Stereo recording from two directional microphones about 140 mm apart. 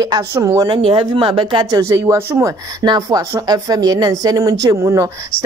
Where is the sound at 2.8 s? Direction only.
30° right (ahead or behind).